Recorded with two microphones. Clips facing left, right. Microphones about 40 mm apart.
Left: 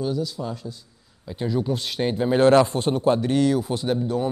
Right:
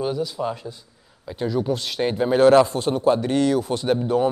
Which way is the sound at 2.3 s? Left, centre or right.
Centre.